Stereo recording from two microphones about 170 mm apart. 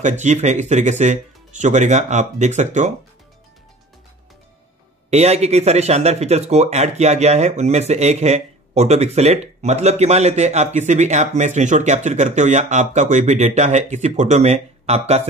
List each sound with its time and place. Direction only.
0.0 s speech: 45° right (ahead or behind)
5.1 s speech: 40° right (ahead or behind)